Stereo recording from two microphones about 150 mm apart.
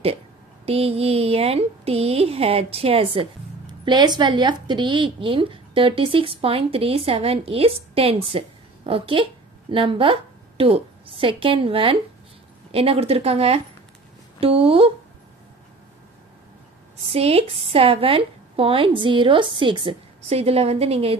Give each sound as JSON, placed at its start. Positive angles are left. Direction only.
{"t": 0.7, "sound": "speech", "side_deg": -40}
{"t": 17.0, "sound": "speech", "side_deg": -40}